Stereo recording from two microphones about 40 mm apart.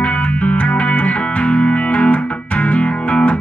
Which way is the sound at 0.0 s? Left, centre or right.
Left.